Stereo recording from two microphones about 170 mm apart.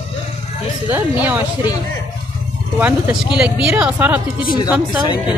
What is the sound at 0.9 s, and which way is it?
Speech, 10° right (ahead or behind).